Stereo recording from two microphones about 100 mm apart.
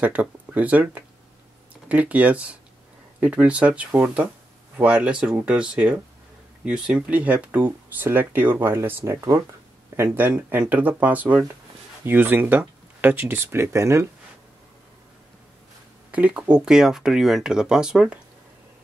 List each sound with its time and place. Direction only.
0.0 s speech: 15° right (ahead or behind); by 14.0 s 30° right (ahead or behind)
16.1 s speech: 15° right (ahead or behind)